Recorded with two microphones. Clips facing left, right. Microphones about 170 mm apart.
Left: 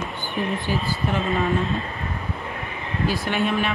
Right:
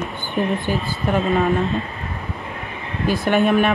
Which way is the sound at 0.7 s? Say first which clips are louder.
Right 3 dB; 50° right (ahead or behind).